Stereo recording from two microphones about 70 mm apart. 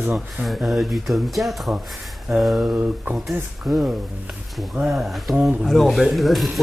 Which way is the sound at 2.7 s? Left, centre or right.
Right.